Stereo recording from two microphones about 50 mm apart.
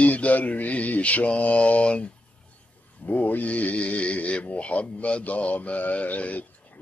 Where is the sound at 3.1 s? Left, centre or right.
Left.